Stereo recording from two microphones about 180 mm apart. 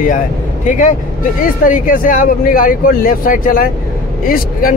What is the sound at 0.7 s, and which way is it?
Speech, 45° left (ahead or behind).